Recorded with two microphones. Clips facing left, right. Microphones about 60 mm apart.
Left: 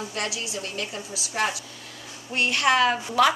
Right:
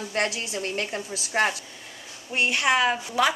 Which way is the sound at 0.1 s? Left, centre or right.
Right.